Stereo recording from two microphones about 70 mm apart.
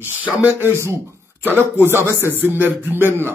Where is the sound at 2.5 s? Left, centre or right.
Right.